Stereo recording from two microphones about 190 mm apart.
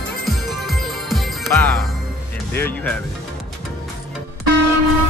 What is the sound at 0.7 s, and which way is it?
Music, centre (ahead or behind).